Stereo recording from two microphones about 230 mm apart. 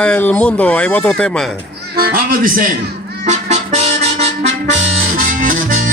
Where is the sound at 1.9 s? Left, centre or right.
Right.